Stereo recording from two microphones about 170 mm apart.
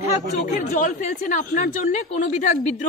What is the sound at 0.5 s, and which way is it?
A woman's voice, 50° left (ahead or behind).